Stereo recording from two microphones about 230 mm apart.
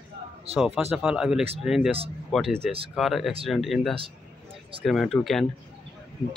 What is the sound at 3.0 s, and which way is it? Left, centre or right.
Speech, centre.